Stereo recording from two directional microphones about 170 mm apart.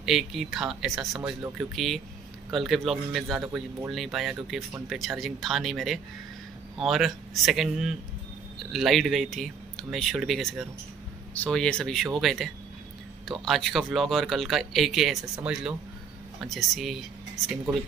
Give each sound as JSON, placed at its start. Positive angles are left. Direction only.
{"t": 0.0, "sound": "speech", "side_deg": 0}